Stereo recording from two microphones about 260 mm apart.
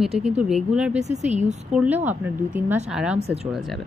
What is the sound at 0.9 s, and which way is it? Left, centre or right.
Speech, right.